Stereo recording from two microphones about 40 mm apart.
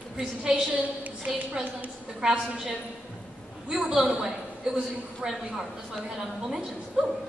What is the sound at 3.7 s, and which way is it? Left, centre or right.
A woman's voice, centre.